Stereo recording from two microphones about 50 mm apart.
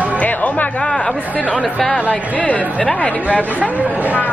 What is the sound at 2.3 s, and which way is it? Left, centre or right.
Speech, left.